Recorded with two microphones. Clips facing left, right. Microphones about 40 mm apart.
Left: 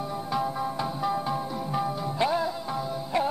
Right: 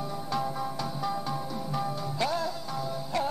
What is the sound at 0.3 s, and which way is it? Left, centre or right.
Music, centre.